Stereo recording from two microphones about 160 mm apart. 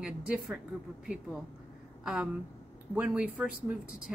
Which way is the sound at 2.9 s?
10° right (ahead or behind).